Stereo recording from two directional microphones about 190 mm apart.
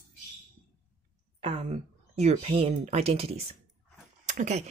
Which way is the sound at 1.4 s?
35° right (ahead or behind).